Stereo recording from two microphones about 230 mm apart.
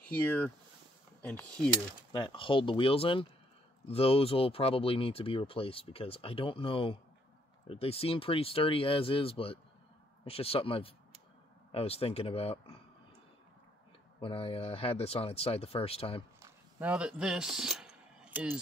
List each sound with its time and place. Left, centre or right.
0.0 s speech: centre
2.1 s speech: left
14.2 s speech: left
16.4 s a sound: centre